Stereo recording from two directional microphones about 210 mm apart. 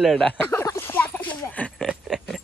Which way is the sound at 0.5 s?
10° left (ahead or behind).